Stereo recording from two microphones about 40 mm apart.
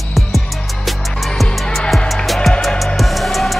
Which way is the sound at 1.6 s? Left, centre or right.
Centre.